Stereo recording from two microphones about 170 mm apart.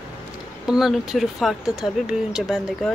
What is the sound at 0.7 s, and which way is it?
Speech, centre (ahead or behind).